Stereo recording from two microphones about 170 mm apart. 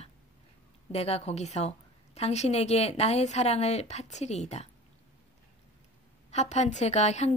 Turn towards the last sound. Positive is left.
turn(degrees=40)  # may be behind; listen again after turning